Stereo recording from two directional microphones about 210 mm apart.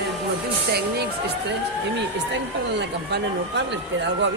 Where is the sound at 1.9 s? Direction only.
55° right (ahead or behind).